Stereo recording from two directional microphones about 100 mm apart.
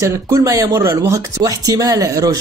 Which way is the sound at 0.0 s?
35° right (ahead or behind).